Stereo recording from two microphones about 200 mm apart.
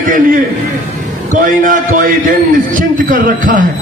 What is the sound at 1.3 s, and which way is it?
A man's voice, 40° right (ahead or behind).